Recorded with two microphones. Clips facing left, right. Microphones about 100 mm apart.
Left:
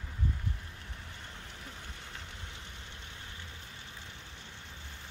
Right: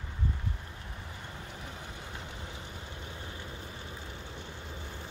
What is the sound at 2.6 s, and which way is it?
Vehicle, 35° right (ahead or behind).